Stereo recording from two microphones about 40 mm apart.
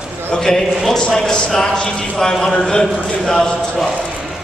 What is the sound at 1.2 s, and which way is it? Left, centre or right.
A man's voice, centre.